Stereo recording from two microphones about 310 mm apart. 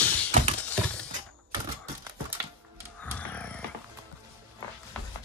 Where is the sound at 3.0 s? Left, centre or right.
Centre.